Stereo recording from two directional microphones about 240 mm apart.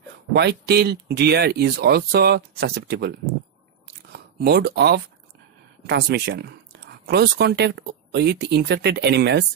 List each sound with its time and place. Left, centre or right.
0.3 s speech: right